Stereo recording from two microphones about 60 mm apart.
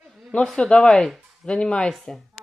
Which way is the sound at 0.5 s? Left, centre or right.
Centre.